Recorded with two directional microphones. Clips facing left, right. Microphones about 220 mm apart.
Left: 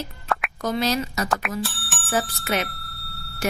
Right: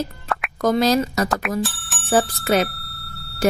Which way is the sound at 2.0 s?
35° right (ahead or behind).